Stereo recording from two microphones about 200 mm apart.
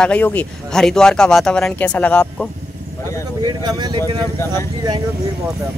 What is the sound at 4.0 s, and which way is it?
Speech, 15° left (ahead or behind).